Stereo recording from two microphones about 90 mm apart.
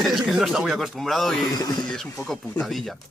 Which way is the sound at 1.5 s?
50° left (ahead or behind).